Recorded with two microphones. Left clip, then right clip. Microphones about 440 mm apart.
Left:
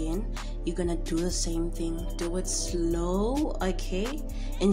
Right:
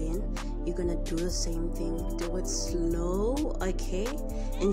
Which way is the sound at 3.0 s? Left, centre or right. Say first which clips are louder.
Left 1 dB; centre.